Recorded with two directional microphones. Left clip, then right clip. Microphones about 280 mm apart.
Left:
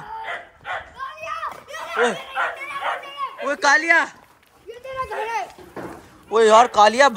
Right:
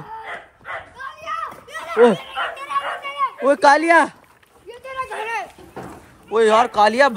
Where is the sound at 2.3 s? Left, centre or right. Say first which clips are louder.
Right 2 dB; left.